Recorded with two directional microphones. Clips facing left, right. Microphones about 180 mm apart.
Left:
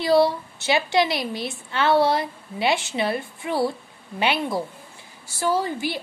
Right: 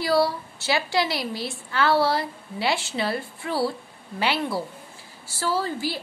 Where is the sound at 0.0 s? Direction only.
20° left (ahead or behind).